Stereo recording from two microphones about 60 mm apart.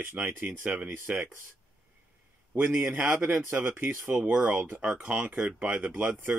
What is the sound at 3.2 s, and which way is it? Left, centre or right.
Speech, right.